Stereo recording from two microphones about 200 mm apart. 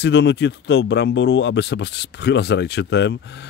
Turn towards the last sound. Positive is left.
turn(degrees=60)  # may be behind; listen again after turning